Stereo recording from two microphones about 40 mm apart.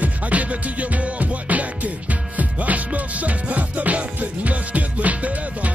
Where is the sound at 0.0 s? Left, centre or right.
Right.